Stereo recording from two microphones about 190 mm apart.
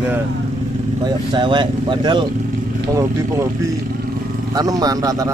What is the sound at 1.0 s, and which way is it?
Speech, 25° right (ahead or behind).